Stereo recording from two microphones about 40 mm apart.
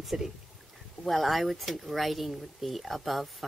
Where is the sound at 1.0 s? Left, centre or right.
Centre.